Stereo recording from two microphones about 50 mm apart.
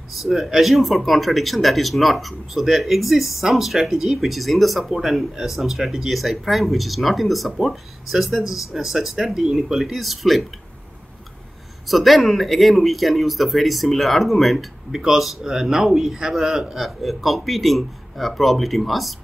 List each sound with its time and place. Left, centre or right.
0.2 s speech: centre
11.9 s speech: centre